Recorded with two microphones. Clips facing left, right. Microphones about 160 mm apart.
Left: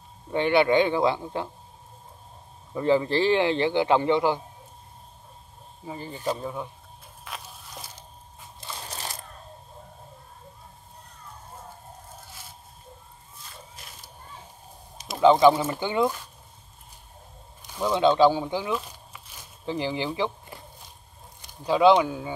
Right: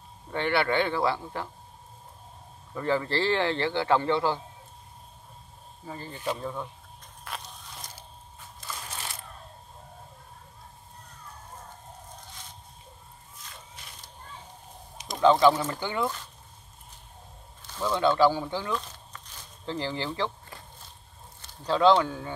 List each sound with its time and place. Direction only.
0.3 s a man's voice: 15° left (ahead or behind)
2.7 s a man's voice: 15° left (ahead or behind)
5.9 s a man's voice: 15° left (ahead or behind)
7.2 s a sound: 5° left (ahead or behind)
8.5 s crushing: 30° left (ahead or behind)
13.8 s a sound: 5° left (ahead or behind)
15.2 s a man's voice: 15° left (ahead or behind)
17.6 s a sound: 15° left (ahead or behind)
21.4 s speech: 15° left (ahead or behind)